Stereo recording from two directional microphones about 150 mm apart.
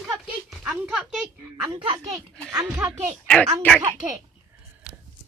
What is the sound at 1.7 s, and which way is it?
Speech, 35° right (ahead or behind).